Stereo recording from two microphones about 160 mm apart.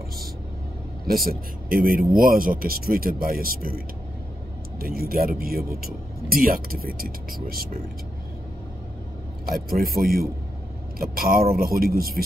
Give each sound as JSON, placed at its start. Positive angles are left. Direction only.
{"t": 1.0, "sound": "speech", "side_deg": -65}
{"t": 9.5, "sound": "speech", "side_deg": -70}